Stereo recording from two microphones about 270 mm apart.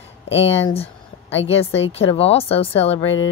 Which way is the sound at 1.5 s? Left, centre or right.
Left.